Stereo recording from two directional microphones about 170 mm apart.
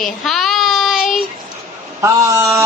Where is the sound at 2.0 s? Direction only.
15° right (ahead or behind).